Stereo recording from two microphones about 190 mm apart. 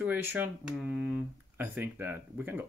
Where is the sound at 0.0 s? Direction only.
10° right (ahead or behind).